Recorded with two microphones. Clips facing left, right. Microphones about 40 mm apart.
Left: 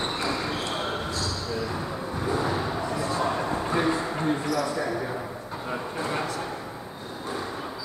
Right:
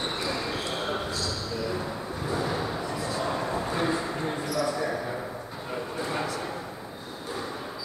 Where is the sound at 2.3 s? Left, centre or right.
Centre.